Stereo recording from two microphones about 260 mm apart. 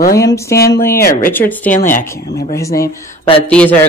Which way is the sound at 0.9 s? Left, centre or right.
Left.